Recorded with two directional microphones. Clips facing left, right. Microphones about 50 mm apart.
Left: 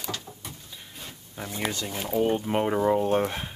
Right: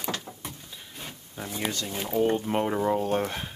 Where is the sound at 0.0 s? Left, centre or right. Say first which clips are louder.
Right 2 dB; right.